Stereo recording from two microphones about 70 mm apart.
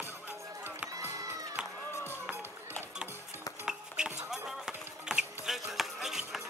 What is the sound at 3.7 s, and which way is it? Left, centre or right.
Music, centre.